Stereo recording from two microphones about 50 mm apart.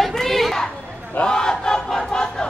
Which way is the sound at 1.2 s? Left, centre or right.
Centre.